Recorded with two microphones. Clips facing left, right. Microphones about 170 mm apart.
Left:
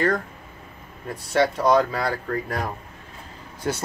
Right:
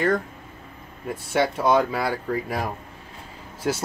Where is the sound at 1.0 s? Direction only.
5° right (ahead or behind).